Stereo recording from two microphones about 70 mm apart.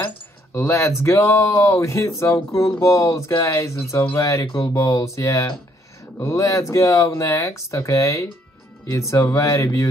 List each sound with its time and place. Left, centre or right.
0.6 s speech: left